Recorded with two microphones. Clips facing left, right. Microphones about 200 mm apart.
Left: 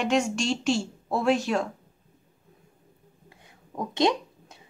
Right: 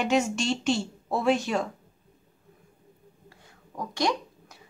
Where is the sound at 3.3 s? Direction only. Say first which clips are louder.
Left 3 dB; 20° left (ahead or behind).